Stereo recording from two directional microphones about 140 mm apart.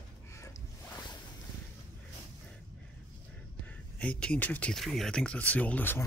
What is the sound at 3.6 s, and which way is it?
Speech, 10° left (ahead or behind).